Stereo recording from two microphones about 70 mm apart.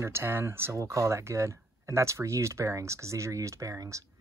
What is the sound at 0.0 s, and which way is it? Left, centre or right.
Speech, right.